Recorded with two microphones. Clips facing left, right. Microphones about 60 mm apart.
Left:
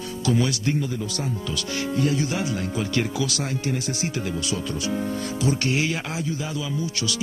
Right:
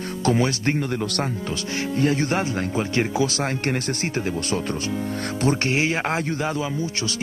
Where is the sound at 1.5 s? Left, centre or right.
Right.